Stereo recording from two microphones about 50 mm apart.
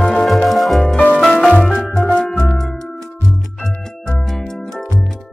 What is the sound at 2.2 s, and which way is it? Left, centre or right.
Music, left.